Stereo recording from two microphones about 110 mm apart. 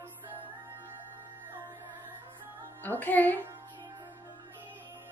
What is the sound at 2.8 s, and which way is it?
Speech, 15° left (ahead or behind).